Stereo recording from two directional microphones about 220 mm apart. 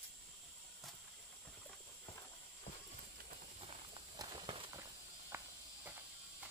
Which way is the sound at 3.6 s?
25° right (ahead or behind).